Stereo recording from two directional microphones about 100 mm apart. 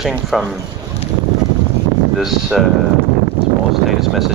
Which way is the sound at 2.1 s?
5° right (ahead or behind).